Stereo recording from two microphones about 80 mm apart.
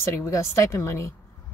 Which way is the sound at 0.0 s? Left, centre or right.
Left.